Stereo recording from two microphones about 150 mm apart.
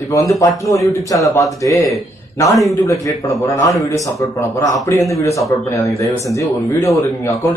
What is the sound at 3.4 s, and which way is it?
Speech, 20° left (ahead or behind).